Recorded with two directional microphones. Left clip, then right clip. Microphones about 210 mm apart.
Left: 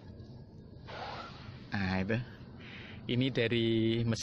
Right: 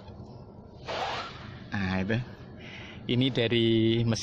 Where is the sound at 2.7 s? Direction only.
5° right (ahead or behind).